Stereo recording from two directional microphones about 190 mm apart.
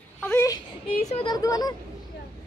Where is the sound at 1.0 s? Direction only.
35° left (ahead or behind).